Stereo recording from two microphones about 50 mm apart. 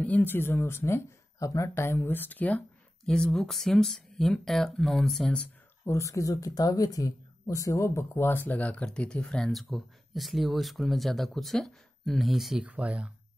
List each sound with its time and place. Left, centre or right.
0.2 s speech: left
1.9 s speech: left
3.1 s speech: centre
5.9 s speech: left
8.8 s speech: centre
9.2 s speech: centre
12.6 s speech: right